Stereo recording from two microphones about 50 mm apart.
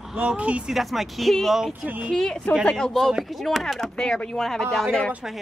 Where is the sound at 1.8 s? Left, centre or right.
Right.